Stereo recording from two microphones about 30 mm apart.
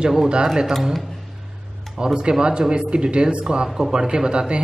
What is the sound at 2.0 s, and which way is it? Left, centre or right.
A woman's voice, right.